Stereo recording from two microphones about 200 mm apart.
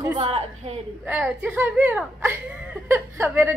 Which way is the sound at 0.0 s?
20° right (ahead or behind).